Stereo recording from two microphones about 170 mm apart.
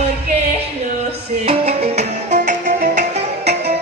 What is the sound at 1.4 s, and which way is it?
Music, 40° right (ahead or behind).